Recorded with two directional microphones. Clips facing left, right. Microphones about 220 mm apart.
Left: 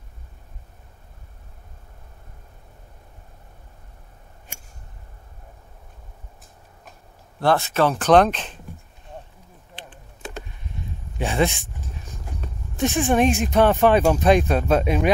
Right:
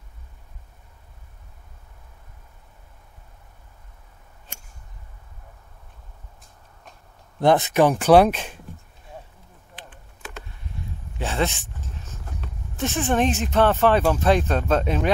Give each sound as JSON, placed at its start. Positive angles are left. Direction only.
{"t": 7.3, "sound": "speech", "side_deg": -20}
{"t": 9.8, "sound": "typing", "side_deg": 30}
{"t": 11.1, "sound": "dog", "side_deg": 15}
{"t": 12.7, "sound": "speech", "side_deg": 15}